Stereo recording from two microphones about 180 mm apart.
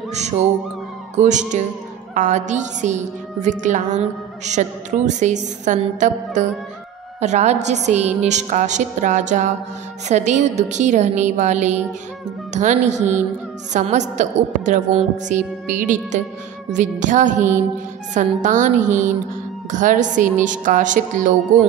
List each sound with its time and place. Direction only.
1.2 s a woman's voice: 40° right (ahead or behind)